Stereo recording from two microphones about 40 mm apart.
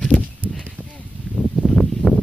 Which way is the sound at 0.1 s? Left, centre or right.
Left.